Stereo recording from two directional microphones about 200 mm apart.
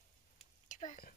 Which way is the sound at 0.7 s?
40° left (ahead or behind).